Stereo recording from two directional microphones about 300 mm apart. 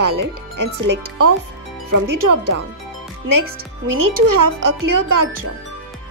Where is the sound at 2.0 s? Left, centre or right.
Right.